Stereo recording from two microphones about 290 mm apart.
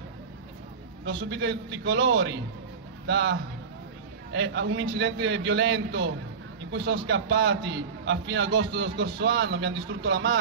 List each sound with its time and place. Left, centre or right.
1.0 s a man's voice: right